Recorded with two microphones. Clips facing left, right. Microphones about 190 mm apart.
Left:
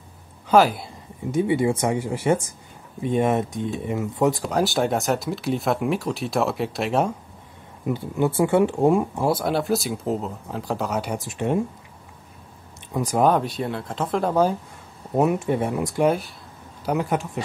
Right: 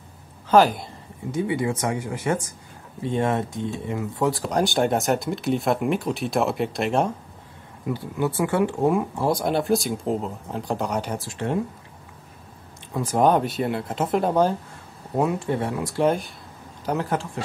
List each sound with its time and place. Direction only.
0.5 s speech: 5° left (ahead or behind)
1.3 s speech: 25° left (ahead or behind)
4.4 s speech: 5° left (ahead or behind)
7.8 s speech: 25° left (ahead or behind)
9.2 s speech: 5° left (ahead or behind); by 11.6 s 20° left (ahead or behind)
12.9 s speech: 15° left (ahead or behind)
13.2 s speech: centre (ahead or behind)
15.1 s speech: 20° left (ahead or behind)
16.0 s speech: 10° left (ahead or behind)